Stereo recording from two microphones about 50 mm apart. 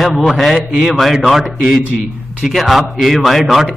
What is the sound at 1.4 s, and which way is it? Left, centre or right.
Speech, centre.